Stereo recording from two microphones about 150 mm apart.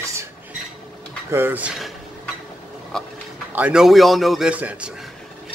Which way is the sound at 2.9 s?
5° left (ahead or behind).